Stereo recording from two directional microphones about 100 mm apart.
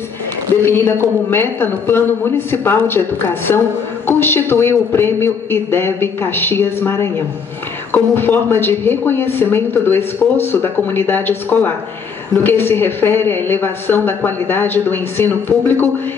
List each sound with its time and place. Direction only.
0.6 s speech: 25° left (ahead or behind)